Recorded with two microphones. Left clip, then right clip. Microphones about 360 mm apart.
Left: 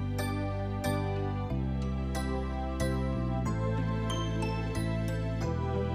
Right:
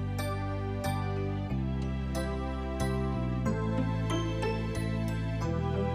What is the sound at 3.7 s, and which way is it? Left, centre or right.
Music, centre.